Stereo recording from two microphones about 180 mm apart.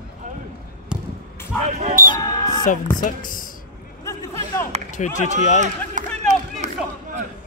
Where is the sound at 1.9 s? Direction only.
50° right (ahead or behind).